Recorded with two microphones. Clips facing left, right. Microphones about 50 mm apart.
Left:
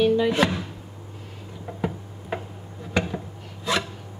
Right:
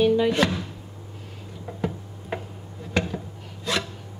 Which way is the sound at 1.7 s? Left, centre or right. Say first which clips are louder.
Left 1 dB; left.